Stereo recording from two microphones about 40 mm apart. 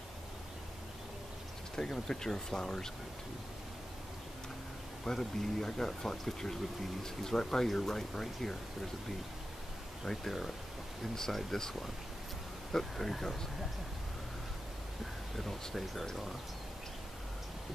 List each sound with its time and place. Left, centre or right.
1.8 s speech: centre
5.0 s speech: centre
10.0 s speech: centre
12.7 s speech: centre
15.3 s speech: centre